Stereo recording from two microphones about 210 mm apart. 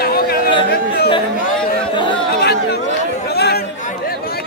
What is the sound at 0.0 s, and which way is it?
Chatter, 45° left (ahead or behind).